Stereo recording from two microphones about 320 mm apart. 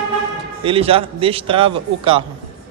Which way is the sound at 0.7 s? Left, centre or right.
Centre.